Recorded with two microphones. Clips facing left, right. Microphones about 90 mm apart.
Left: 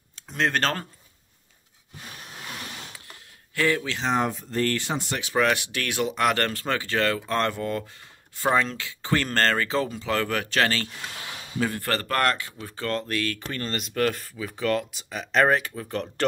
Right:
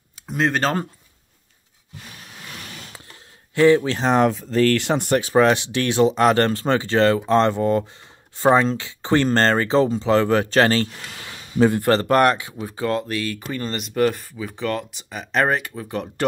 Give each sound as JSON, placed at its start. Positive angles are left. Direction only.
{"t": 0.3, "sound": "speech", "side_deg": -5}
{"t": 3.5, "sound": "speech", "side_deg": -20}
{"t": 3.8, "sound": "speech", "side_deg": -40}
{"t": 4.1, "sound": "speech", "side_deg": -85}
{"t": 5.2, "sound": "speech", "side_deg": -30}